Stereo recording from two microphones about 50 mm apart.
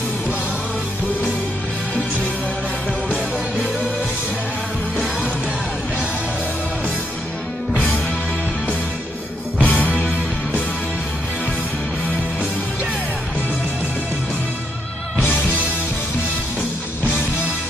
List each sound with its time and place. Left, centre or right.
9.6 s music: left